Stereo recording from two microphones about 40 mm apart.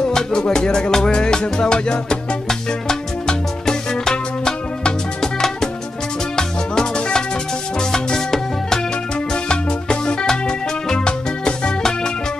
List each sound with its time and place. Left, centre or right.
0.1 s music: centre